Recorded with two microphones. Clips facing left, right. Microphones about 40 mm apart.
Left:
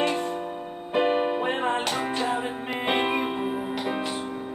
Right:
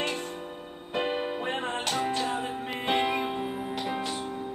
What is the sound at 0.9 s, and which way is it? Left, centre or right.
Music, left.